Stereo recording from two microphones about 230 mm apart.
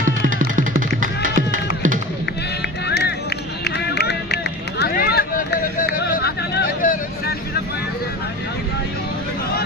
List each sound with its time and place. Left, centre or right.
0.0 s music: right
2.9 s music: left
3.6 s run: left